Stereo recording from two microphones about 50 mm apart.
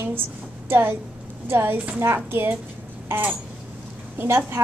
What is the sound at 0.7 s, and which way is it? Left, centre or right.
Speech, right.